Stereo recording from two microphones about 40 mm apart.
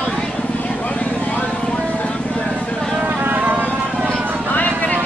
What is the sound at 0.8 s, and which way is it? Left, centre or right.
Vehicle, left.